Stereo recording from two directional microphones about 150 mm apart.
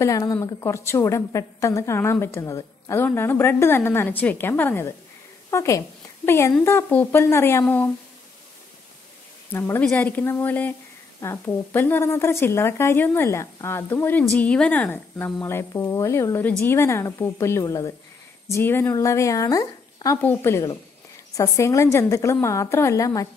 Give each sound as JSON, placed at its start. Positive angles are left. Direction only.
{"t": 0.0, "sound": "a woman's voice", "side_deg": 20}
{"t": 9.5, "sound": "a woman's voice", "side_deg": 15}